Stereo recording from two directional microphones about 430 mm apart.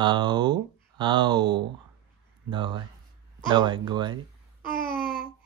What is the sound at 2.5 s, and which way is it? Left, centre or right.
Speech, centre.